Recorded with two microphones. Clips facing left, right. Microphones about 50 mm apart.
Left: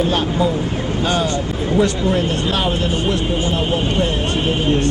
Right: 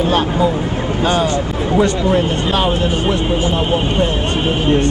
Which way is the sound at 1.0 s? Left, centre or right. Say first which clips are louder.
Right 4 dB; right.